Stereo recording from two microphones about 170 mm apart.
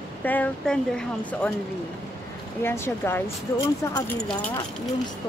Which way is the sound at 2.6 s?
15° left (ahead or behind).